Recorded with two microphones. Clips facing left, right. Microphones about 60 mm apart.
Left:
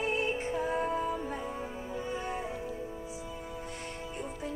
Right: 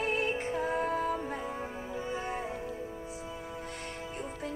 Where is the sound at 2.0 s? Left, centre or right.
Centre.